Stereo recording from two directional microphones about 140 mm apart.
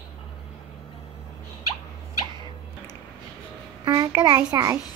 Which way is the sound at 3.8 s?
25° right (ahead or behind).